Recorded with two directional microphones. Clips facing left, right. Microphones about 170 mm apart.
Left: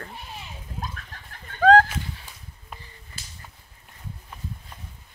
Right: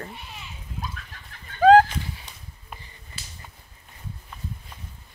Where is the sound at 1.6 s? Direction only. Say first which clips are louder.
Right 2 dB; 15° right (ahead or behind).